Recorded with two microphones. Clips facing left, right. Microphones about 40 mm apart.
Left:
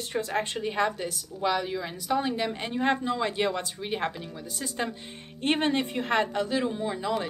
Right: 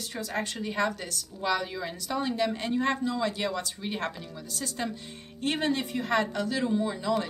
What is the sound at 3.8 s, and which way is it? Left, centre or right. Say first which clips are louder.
Speech: left 3 dB; centre.